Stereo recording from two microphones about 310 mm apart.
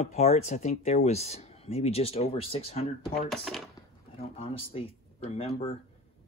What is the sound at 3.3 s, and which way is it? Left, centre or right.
Speech, centre.